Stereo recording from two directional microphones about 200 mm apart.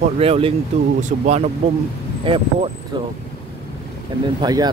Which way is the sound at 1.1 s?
45° right (ahead or behind).